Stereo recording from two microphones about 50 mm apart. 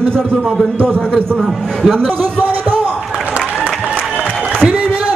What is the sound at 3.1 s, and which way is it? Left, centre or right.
Applause, right.